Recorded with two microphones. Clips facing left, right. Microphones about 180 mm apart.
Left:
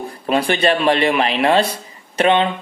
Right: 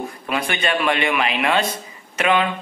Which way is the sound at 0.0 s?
35° left (ahead or behind).